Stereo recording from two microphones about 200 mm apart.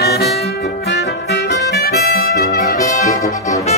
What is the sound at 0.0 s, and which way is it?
Music, 50° left (ahead or behind).